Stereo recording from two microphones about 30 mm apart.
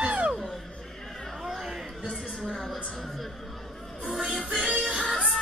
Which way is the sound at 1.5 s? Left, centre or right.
Centre.